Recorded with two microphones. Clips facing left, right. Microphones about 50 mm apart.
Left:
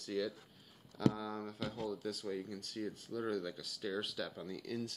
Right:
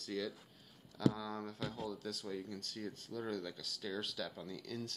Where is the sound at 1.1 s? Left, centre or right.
Left.